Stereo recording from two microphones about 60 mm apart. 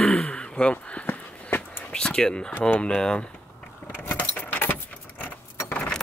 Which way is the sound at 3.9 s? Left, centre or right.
Left.